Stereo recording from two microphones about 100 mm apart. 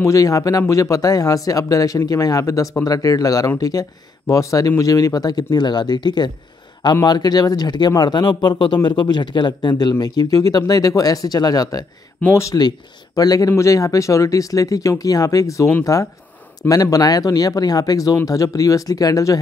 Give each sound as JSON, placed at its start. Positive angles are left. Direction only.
{"t": 0.0, "sound": "speech", "side_deg": 35}